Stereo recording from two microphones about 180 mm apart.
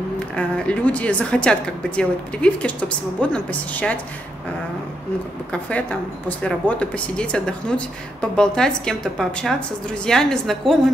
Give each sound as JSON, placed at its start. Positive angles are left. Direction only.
{"t": 0.4, "sound": "a woman's voice", "side_deg": 5}
{"t": 5.5, "sound": "a woman's voice", "side_deg": 5}